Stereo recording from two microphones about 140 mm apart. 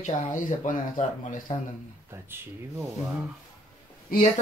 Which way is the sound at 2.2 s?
15° right (ahead or behind).